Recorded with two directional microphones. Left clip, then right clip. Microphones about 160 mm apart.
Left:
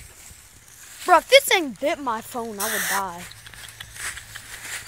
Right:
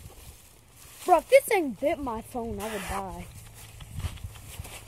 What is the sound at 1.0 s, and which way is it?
Speech, 35° left (ahead or behind).